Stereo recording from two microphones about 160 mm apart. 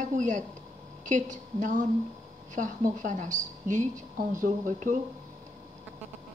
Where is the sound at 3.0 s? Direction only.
50° right (ahead or behind).